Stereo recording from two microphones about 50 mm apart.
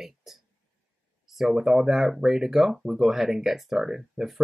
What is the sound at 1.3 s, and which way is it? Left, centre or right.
Speech, centre.